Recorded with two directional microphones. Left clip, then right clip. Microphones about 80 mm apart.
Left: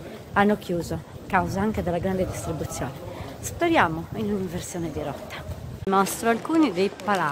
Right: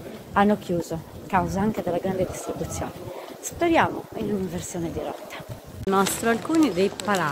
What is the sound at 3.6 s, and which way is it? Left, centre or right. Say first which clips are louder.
Speech: even; left.